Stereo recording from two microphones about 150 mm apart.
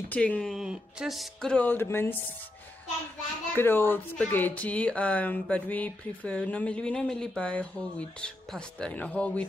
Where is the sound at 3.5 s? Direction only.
15° left (ahead or behind).